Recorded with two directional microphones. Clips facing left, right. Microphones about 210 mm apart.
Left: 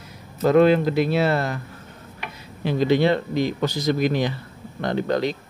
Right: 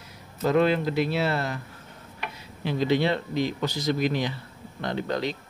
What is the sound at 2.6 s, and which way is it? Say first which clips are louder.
Speech: left 5 dB; 45° left (ahead or behind).